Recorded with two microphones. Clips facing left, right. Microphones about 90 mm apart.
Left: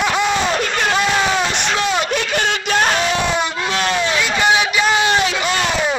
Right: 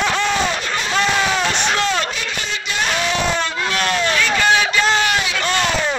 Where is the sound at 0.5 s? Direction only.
60° left (ahead or behind).